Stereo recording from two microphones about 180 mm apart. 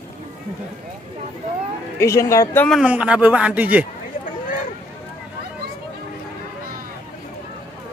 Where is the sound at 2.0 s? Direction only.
15° left (ahead or behind).